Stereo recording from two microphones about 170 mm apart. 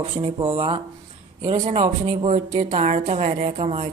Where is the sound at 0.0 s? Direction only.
35° right (ahead or behind).